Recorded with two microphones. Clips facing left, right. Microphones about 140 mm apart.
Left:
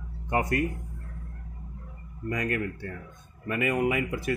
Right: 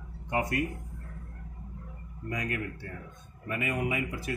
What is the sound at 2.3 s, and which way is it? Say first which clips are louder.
Speech: left 5 dB; 55° left (ahead or behind).